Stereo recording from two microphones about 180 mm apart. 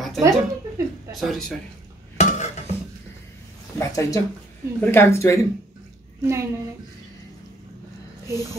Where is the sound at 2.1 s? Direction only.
40° left (ahead or behind).